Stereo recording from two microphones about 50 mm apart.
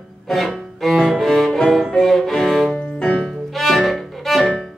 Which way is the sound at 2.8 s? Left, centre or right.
Centre.